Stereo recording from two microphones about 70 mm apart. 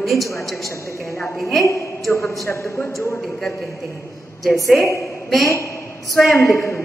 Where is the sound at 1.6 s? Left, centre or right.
Left.